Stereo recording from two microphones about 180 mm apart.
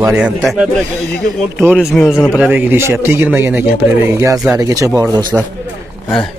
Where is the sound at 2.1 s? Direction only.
15° left (ahead or behind).